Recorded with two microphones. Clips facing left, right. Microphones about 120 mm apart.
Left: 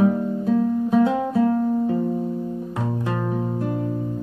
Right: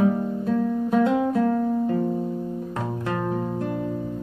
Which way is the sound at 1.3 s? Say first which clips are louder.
Left 2 dB; 5° left (ahead or behind).